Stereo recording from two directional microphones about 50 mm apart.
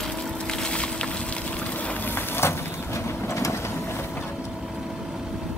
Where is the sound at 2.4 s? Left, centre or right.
Left.